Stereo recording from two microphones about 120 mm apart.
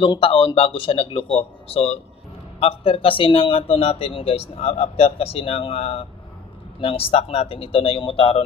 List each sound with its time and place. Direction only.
0.0 s speech: 45° left (ahead or behind)